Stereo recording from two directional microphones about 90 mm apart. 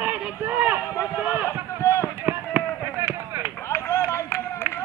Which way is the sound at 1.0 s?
15° right (ahead or behind).